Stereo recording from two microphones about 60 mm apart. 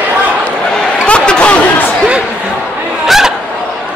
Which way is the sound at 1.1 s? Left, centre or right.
Centre.